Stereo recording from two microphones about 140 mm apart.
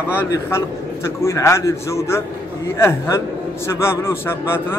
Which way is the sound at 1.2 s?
20° left (ahead or behind).